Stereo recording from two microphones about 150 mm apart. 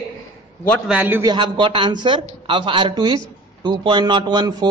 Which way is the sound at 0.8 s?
10° right (ahead or behind).